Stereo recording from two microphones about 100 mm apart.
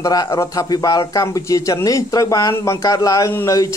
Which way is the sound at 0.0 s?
35° left (ahead or behind).